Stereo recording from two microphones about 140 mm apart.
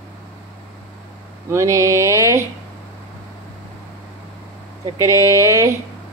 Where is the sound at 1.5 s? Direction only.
20° right (ahead or behind).